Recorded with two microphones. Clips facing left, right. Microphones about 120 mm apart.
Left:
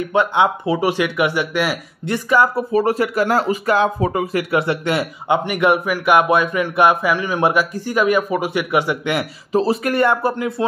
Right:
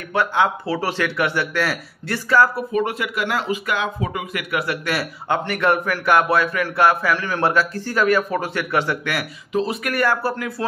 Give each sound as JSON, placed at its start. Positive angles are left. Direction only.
{"t": 0.1, "sound": "speech", "side_deg": 20}
{"t": 2.7, "sound": "speech", "side_deg": 35}
{"t": 9.5, "sound": "speech", "side_deg": 35}